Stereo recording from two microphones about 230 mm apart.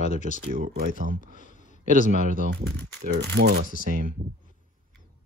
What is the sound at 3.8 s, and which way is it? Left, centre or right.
Speech, right.